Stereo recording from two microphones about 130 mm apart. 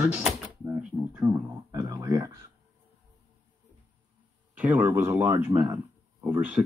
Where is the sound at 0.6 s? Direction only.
10° right (ahead or behind).